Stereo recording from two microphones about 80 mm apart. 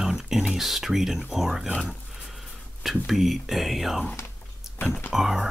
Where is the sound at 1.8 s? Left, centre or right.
Centre.